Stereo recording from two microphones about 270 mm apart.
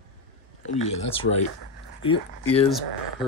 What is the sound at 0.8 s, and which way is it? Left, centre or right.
Speech, left.